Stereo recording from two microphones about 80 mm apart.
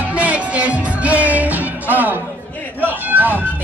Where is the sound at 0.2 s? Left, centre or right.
Centre.